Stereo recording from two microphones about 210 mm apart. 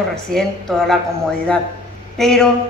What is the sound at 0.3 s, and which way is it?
Speech, centre (ahead or behind).